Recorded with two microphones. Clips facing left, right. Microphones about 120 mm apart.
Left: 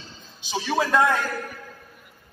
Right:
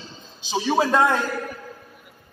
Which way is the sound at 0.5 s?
25° right (ahead or behind).